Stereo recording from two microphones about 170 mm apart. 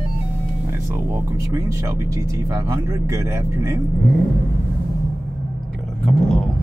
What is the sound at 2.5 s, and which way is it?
Speech, 20° right (ahead or behind).